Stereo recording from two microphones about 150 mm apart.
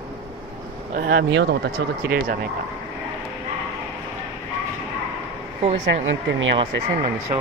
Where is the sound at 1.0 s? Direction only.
80° right.